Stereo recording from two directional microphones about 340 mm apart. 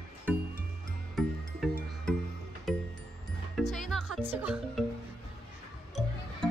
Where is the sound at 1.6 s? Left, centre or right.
Centre.